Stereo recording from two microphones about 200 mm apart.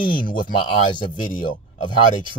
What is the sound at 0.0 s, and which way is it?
Speech, 45° left (ahead or behind).